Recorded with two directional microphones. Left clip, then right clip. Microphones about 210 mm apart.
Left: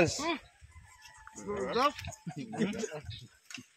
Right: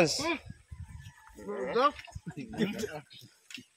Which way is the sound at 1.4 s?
5° right (ahead or behind).